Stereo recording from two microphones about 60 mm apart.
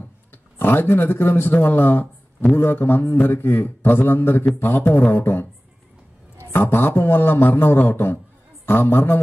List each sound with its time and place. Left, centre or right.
0.3 s a man's voice: left
6.5 s a man's voice: left